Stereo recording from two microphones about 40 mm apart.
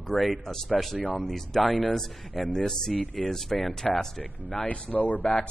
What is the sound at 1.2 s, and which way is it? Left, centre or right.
Speech, centre.